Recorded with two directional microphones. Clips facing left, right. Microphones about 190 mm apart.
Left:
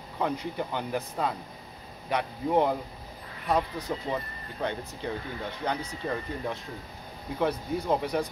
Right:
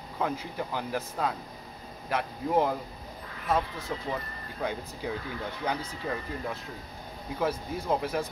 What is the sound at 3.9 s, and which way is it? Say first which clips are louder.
Speech: left 2 dB; centre (ahead or behind).